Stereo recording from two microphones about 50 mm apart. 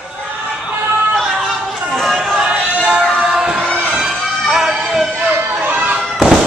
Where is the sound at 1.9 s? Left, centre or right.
Centre.